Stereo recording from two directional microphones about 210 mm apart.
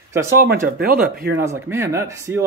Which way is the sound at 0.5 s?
45° right (ahead or behind).